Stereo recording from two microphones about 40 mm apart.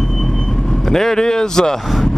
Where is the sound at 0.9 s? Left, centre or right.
Centre.